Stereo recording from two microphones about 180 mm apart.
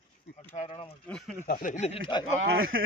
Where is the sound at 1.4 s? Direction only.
50° left (ahead or behind).